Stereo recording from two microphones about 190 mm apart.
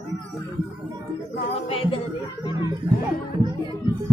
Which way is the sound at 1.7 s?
30° left (ahead or behind).